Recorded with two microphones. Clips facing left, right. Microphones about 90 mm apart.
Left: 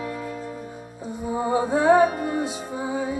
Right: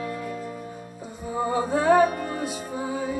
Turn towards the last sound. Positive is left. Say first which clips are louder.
# left 2 dB
turn(degrees=20)  # may be behind; listen again after turning